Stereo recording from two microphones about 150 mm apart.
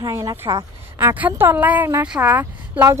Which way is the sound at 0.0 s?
25° right (ahead or behind).